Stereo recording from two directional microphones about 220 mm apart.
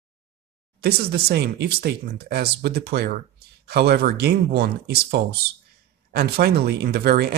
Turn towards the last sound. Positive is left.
turn(degrees=-45)  # may be behind; listen again after turning